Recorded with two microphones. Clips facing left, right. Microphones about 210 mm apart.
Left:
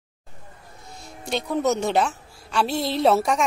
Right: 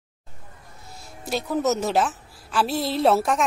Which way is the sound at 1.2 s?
5° right (ahead or behind).